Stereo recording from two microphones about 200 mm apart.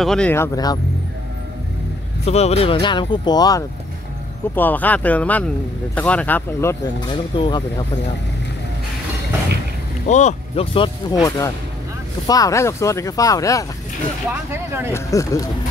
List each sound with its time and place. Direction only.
0.0 s speech: 5° left (ahead or behind)
2.2 s speech: 30° left (ahead or behind)
4.6 s speech: 10° left (ahead or behind)
10.0 s speech: 35° left (ahead or behind); by 13.7 s 15° left (ahead or behind)
14.5 s speech: 10° right (ahead or behind)
15.0 s speech: 15° left (ahead or behind)